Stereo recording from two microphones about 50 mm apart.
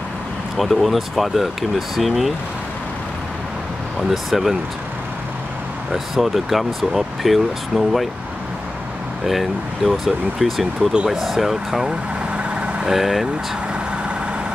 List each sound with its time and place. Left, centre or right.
0.6 s speech: centre
4.1 s speech: centre
5.9 s speech: centre
9.2 s speech: centre
12.4 s vehicle: right
12.9 s speech: centre